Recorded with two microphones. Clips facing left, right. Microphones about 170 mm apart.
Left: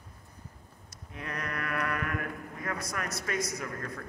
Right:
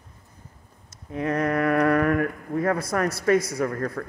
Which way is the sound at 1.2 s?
45° right (ahead or behind).